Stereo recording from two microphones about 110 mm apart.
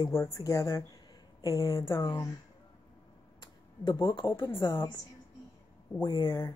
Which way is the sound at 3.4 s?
45° left (ahead or behind).